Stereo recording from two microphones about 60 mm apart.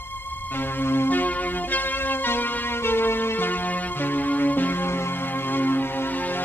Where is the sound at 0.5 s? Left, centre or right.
Left.